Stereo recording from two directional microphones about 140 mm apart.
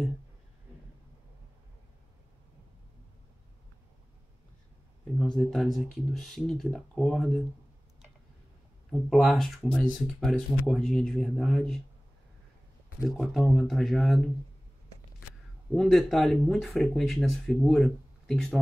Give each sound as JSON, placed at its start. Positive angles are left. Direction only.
{"t": 5.2, "sound": "speech", "side_deg": 5}
{"t": 9.1, "sound": "speech", "side_deg": 0}
{"t": 13.0, "sound": "speech", "side_deg": 0}
{"t": 15.7, "sound": "speech", "side_deg": 5}